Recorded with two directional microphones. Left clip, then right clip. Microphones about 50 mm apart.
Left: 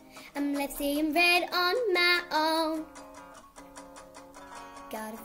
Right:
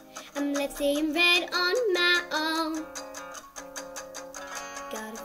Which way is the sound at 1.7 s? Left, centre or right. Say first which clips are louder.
Right 2 dB; left.